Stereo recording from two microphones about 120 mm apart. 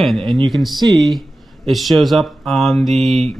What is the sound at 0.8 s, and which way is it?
Speech, 40° right (ahead or behind).